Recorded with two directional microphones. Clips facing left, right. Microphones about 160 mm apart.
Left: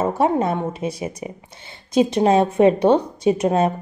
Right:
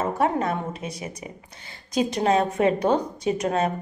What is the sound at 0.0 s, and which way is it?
A woman's voice, 30° left (ahead or behind).